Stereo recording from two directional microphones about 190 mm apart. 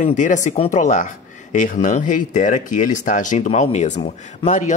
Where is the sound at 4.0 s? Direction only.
25° left (ahead or behind).